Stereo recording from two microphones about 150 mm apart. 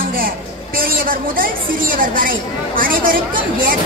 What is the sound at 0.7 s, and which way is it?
A woman's voice, 75° right (ahead or behind).